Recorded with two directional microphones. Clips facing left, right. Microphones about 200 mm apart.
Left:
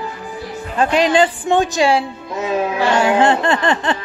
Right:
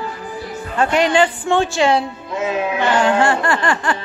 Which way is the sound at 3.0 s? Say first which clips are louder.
Left 3 dB; 15° left (ahead or behind).